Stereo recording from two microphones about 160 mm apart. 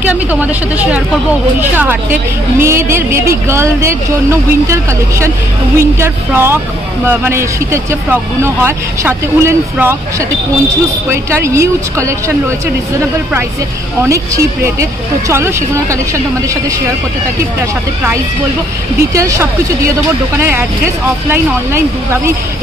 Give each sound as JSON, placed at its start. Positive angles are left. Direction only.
{"t": 0.0, "sound": "speech", "side_deg": -10}
{"t": 5.8, "sound": "speech", "side_deg": -15}
{"t": 11.1, "sound": "speech", "side_deg": -15}
{"t": 14.0, "sound": "speech", "side_deg": -20}
{"t": 19.1, "sound": "speech", "side_deg": -20}